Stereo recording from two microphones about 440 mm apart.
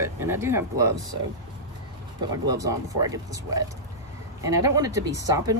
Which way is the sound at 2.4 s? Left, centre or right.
Centre.